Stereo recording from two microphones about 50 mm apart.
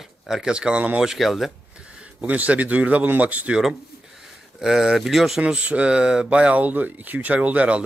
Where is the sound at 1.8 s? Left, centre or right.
Right.